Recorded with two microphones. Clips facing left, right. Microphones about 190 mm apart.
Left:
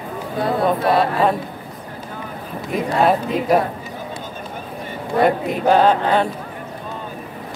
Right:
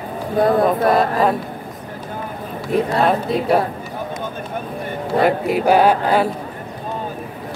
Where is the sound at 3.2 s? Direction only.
35° right (ahead or behind).